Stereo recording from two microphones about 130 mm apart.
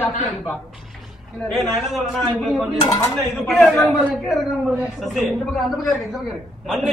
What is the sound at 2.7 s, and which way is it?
Speech, 25° left (ahead or behind).